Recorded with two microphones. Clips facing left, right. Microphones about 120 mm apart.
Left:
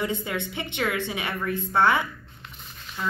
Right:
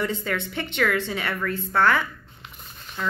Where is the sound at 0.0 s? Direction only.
15° left (ahead or behind).